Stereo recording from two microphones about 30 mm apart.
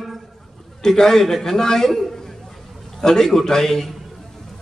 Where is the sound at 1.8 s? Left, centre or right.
Centre.